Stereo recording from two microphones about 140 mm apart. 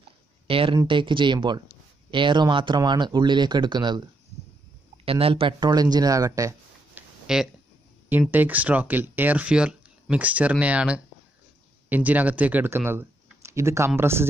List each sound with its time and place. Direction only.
0.5 s speech: 40° right (ahead or behind)
5.0 s speech: 40° right (ahead or behind); by 6.5 s 25° right (ahead or behind)
7.0 s a sound: 5° right (ahead or behind)
8.1 s speech: 15° right (ahead or behind)